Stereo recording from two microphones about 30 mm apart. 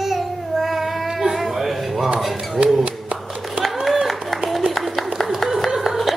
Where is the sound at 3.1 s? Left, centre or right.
Right.